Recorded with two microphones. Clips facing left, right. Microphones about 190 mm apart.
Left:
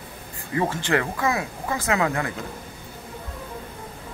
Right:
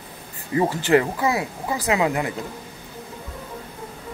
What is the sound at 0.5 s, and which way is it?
Speech, 25° right (ahead or behind).